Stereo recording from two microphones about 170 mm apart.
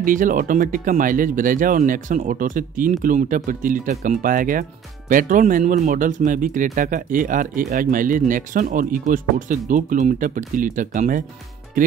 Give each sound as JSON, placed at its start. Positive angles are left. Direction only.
{"t": 0.0, "sound": "speech", "side_deg": -50}